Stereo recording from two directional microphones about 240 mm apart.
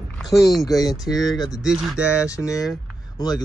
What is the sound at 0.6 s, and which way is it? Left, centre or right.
Speech, centre.